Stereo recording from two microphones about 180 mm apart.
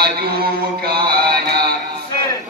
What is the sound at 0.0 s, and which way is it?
Mantra, 60° right (ahead or behind).